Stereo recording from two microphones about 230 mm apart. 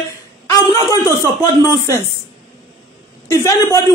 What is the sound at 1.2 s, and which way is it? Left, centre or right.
Speech, centre.